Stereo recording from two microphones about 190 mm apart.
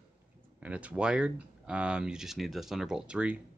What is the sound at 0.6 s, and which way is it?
Speech, 5° right (ahead or behind).